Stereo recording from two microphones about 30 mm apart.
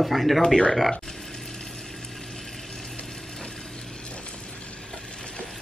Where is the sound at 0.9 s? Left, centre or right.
Centre.